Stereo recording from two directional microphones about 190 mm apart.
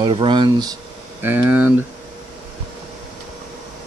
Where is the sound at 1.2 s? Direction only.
10° right (ahead or behind).